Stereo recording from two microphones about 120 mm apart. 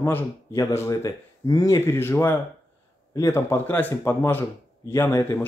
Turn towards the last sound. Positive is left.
turn(degrees=25)  # may be behind; listen again after turning